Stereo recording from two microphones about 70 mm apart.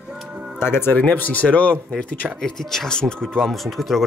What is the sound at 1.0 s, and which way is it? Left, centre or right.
Speech, left.